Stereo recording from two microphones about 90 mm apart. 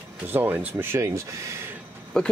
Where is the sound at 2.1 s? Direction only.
10° left (ahead or behind).